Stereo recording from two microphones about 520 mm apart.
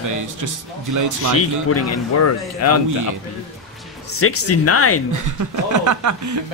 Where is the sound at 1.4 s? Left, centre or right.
Left.